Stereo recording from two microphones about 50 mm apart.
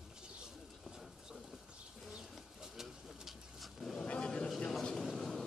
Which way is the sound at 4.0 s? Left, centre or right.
Centre.